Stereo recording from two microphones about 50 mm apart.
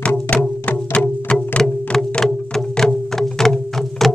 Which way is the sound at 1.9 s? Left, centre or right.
Centre.